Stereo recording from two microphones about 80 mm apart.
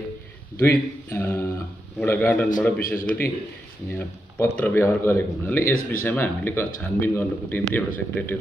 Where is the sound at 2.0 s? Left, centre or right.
Left.